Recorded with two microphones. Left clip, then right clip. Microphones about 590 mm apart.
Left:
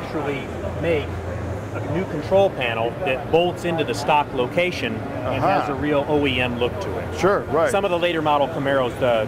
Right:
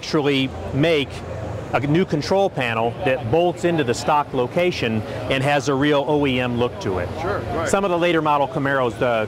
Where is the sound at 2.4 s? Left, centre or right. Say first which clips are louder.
Even; right.